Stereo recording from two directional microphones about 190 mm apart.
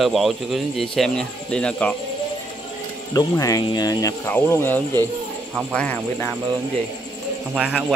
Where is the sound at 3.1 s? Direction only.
15° left (ahead or behind).